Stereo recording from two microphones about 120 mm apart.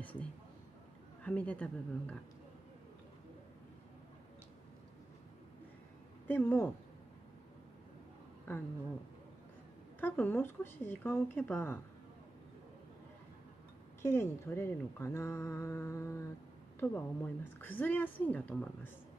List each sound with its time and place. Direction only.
0.0 s a sound: 15° left (ahead or behind)
1.2 s speech: 10° left (ahead or behind)
6.2 s speech: 20° left (ahead or behind)
9.9 s speech: 15° left (ahead or behind)
14.0 s speech: 20° left (ahead or behind)